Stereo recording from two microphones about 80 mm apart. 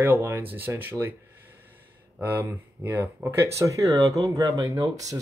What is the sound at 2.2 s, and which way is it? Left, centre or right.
Speech, right.